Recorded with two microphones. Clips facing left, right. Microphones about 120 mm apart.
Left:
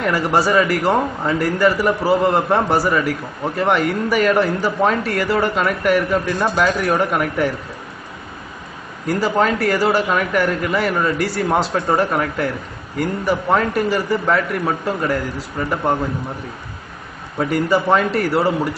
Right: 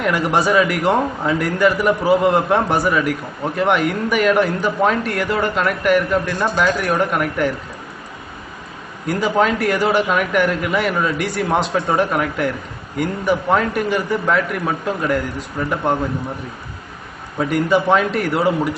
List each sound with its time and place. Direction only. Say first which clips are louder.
0.0 s a man's voice: even; centre (ahead or behind)
9.0 s a man's voice: even; centre (ahead or behind)
17.4 s a man's voice: right 1 dB; centre (ahead or behind)